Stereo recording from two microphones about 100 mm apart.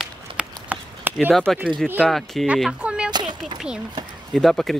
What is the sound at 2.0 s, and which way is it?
Speech, 5° left (ahead or behind).